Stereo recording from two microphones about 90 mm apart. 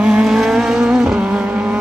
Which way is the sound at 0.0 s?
5° right (ahead or behind).